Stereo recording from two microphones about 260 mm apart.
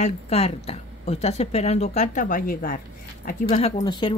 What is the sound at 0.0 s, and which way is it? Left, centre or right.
Speech, left.